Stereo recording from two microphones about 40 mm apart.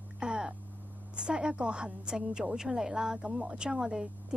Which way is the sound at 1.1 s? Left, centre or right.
Right.